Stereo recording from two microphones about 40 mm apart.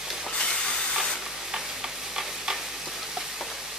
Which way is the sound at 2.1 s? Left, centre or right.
Centre.